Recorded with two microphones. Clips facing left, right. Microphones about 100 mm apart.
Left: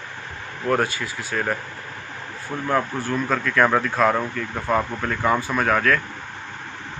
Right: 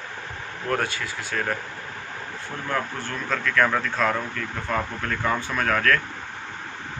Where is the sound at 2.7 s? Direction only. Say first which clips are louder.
Left 6 dB; 10° left (ahead or behind).